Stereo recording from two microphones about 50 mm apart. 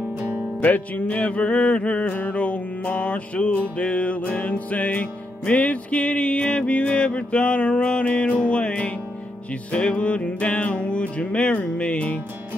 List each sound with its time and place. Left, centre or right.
0.6 s music: left